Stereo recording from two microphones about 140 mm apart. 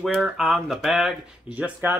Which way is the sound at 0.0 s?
Centre (ahead or behind).